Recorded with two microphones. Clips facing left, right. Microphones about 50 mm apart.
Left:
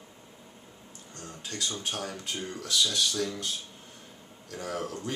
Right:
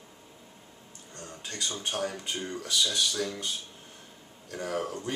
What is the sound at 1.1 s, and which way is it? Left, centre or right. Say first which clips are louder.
Speech: left 1 dB; centre.